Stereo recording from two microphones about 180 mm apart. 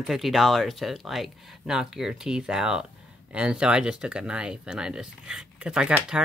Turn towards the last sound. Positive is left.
turn(degrees=-5)  # may be behind; listen again after turning